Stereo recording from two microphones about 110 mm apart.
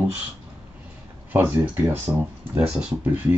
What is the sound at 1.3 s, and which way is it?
Speech, 20° right (ahead or behind).